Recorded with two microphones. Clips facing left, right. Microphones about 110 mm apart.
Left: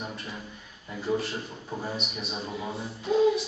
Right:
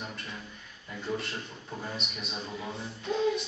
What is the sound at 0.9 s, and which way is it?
Speech, 5° left (ahead or behind).